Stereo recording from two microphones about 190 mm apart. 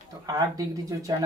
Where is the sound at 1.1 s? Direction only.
20° right (ahead or behind).